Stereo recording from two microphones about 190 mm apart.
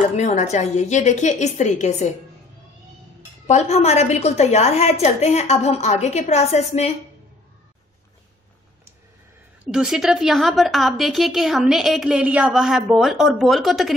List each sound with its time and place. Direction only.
0.1 s a woman's voice: 40° left (ahead or behind)
3.4 s a woman's voice: 35° left (ahead or behind)
9.7 s a woman's voice: 5° right (ahead or behind)